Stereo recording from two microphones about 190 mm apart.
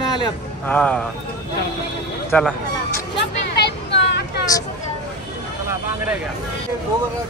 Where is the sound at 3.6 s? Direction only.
65° left (ahead or behind).